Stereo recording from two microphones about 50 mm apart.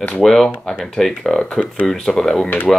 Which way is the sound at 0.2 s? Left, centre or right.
Centre.